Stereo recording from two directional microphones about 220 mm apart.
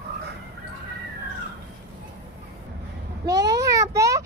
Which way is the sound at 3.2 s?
15° right (ahead or behind).